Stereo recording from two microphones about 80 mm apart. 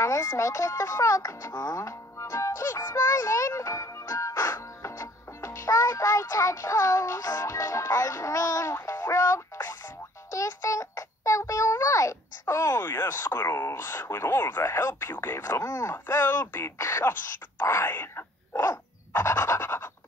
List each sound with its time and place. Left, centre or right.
0.0 s speech: left
8.8 s a sound: left
10.3 s a child's voice: left
15.6 s speech: left
15.9 s speech: left